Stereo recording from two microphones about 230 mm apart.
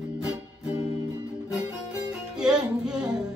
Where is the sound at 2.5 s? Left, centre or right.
Centre.